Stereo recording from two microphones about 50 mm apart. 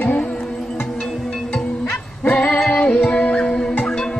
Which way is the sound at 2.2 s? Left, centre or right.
Left.